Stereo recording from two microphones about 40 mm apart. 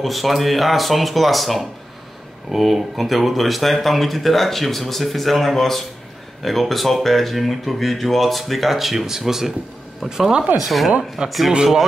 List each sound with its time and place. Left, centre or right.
0.0 s speech: centre
10.6 s speech: centre